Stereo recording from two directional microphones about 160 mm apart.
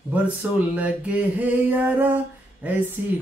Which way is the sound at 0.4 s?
10° right (ahead or behind).